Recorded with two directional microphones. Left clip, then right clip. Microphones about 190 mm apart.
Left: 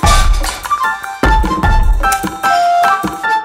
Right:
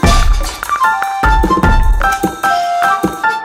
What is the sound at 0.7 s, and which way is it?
Music, centre (ahead or behind).